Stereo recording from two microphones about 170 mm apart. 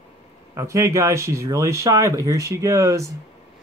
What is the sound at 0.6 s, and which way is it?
Speech, 20° right (ahead or behind).